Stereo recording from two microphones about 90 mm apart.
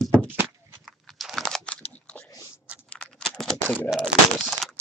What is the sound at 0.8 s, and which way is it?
Biting, centre (ahead or behind).